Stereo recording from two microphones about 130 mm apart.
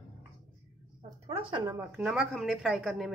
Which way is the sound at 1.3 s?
45° right (ahead or behind).